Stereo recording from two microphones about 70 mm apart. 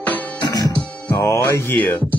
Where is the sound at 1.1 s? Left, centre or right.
Left.